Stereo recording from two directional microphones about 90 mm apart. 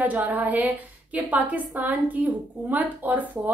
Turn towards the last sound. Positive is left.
turn(degrees=-20)  # may be behind; listen again after turning